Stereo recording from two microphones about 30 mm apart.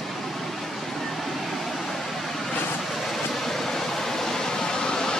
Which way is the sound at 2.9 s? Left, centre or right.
Centre.